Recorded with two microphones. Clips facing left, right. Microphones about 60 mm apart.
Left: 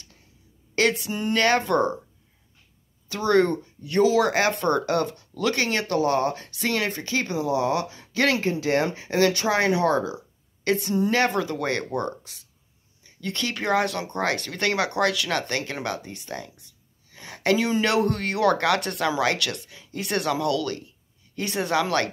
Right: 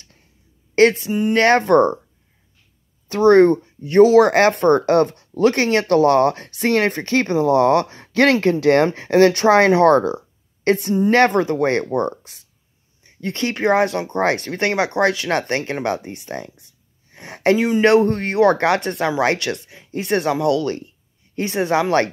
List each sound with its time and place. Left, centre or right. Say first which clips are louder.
0.7 s speech: right 9 dB; right
3.1 s speech: right 9 dB; right
17.6 s speech: right 5 dB; centre
18.0 s speech: right 6 dB; right